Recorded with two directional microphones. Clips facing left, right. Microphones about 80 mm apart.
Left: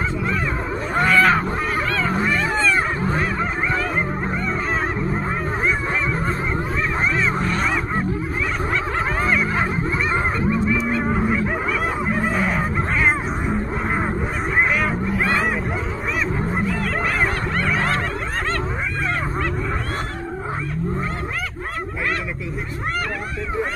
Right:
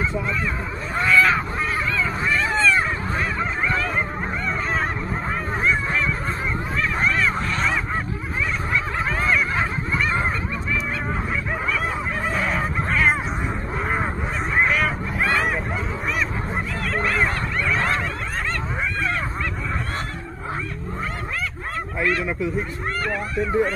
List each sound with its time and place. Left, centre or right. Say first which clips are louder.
0.9 s wild animals: left 2 dB; left
2.1 s cat: left 1 dB; left
7.3 s honk: left 3 dB; left
9.2 s snicker: even; left
10.1 s goose: left 4 dB; centre
12.3 s honk: right 1 dB; centre
13.0 s cat: even; centre
14.6 s music: left 1 dB; centre